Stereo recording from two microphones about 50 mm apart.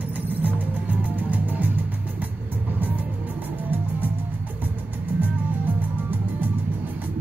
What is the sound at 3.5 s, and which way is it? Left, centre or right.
Music, right.